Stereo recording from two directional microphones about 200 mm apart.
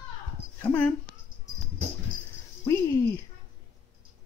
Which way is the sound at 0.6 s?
10° left (ahead or behind).